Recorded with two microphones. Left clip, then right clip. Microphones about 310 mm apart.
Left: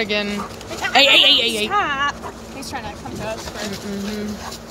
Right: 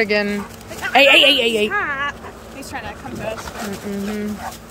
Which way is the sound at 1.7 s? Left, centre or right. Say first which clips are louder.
Left 2 dB; left.